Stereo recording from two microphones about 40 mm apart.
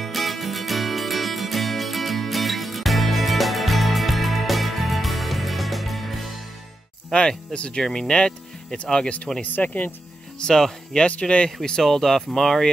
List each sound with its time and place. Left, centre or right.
0.0 s music: centre
7.1 s speech: centre
7.5 s speech: left
7.8 s speech: centre
9.3 s speech: centre
11.1 s speech: left
11.6 s speech: centre